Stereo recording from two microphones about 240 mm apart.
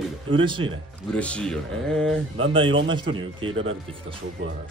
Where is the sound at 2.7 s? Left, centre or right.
Right.